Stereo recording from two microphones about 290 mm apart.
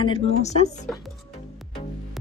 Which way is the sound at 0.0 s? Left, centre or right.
Centre.